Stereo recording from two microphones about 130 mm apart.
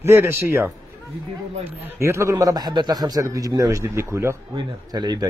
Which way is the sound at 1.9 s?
20° right (ahead or behind).